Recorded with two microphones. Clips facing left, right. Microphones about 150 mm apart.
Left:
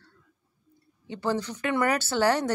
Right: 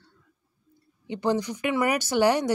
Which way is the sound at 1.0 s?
15° right (ahead or behind).